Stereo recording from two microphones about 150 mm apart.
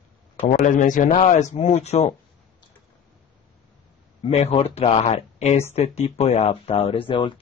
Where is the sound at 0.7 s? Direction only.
60° left (ahead or behind).